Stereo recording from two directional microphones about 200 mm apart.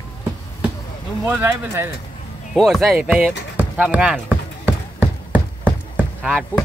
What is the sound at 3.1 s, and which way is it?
Basketball bounce, 5° right (ahead or behind).